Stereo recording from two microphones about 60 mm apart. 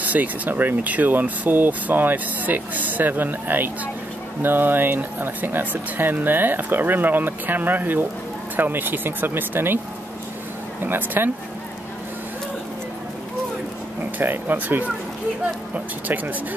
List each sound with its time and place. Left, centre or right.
0.0 s speech: right
10.8 s speech: right
14.1 s speech: right